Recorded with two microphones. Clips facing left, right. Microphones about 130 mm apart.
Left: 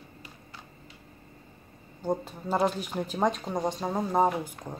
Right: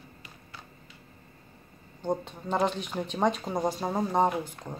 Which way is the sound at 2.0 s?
5° left (ahead or behind).